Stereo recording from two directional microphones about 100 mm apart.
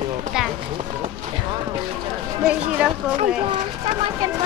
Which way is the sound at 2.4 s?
10° right (ahead or behind).